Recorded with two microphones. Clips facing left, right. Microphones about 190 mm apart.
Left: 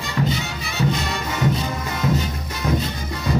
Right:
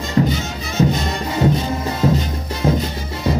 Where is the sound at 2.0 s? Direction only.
30° right (ahead or behind).